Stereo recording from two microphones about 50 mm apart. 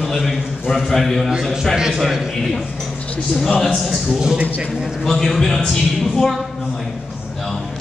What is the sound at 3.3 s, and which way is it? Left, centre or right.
Speech, centre.